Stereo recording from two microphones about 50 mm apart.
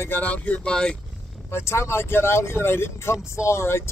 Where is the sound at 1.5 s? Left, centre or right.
Left.